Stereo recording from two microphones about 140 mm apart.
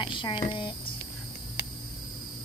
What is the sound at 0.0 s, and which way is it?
Cricket, 35° left (ahead or behind).